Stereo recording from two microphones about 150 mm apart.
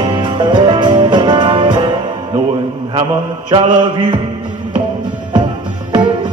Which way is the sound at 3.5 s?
35° right (ahead or behind).